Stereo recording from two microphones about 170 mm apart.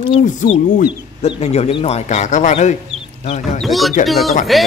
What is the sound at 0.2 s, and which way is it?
Speech, 50° left (ahead or behind).